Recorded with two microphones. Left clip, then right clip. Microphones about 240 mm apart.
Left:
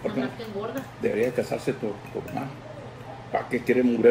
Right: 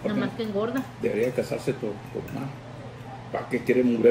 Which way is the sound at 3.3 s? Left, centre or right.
Centre.